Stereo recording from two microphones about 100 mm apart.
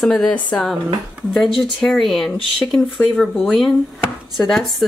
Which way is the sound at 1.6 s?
5° left (ahead or behind).